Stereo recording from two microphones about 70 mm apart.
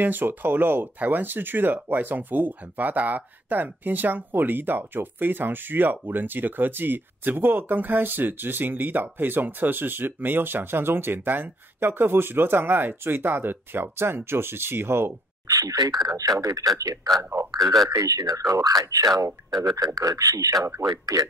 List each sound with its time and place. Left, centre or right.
0.0 s speech: right
15.4 s speech: right
17.2 s a man's voice: right
17.8 s speech: right